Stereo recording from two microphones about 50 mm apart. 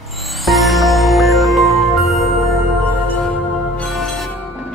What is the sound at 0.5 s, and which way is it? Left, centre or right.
Music, centre.